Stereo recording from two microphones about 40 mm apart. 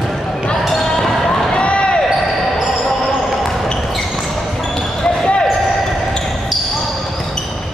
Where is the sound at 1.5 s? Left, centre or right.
Left.